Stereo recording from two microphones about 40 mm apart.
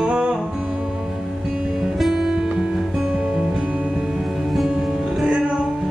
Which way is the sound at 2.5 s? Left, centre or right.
Centre.